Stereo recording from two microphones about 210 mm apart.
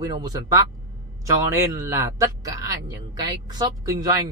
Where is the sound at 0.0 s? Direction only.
15° right (ahead or behind).